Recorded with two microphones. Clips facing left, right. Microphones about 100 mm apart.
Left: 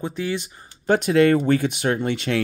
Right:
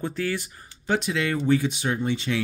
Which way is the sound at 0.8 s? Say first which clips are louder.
Left 9 dB; 50° left (ahead or behind).